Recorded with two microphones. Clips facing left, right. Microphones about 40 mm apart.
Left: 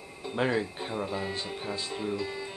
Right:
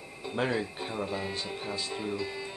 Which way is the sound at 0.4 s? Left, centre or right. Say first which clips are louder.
Left 2 dB; centre.